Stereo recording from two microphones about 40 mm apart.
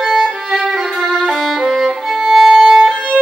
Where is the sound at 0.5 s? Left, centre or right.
Centre.